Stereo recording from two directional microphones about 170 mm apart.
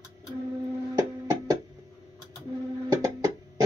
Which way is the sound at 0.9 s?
20° right (ahead or behind).